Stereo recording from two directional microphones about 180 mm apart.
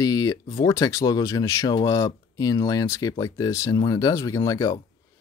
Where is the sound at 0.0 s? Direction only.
20° left (ahead or behind).